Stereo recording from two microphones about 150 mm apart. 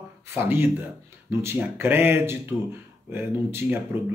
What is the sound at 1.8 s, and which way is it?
Speech, 15° right (ahead or behind).